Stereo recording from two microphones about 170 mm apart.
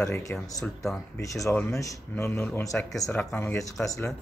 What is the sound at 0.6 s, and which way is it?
Speech, centre (ahead or behind).